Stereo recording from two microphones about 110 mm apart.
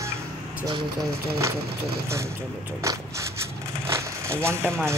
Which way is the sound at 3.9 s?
25° right (ahead or behind).